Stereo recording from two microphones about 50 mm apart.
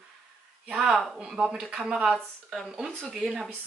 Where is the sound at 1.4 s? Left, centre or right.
Centre.